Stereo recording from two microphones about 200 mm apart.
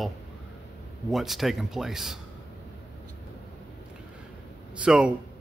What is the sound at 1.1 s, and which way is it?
Speech, centre (ahead or behind).